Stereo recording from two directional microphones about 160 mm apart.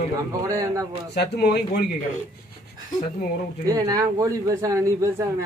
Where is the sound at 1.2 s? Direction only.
90° left.